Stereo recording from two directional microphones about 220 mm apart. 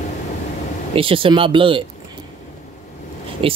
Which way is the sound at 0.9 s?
25° right (ahead or behind).